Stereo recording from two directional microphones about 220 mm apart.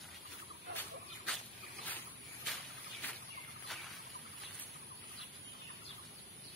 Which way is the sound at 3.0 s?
10° left (ahead or behind).